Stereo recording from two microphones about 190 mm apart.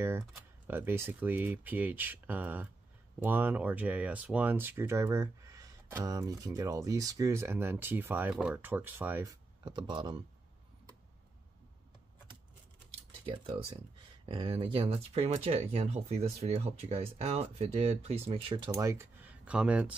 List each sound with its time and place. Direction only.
0.3 s speech: 10° right (ahead or behind)
13.2 s speech: 30° right (ahead or behind); by 19.9 s 5° right (ahead or behind)